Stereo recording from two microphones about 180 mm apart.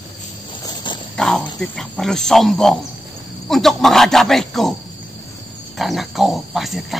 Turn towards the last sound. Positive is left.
turn(degrees=0)  # may be behind; listen again after turning